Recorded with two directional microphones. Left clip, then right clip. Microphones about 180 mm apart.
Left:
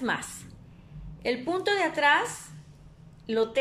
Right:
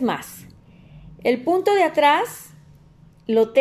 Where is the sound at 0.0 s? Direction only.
30° right (ahead or behind).